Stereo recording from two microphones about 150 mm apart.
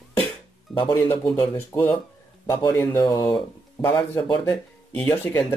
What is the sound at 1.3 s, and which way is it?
Speech, 15° left (ahead or behind).